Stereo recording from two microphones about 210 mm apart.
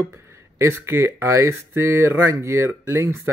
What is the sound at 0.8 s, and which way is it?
Speech, 10° right (ahead or behind).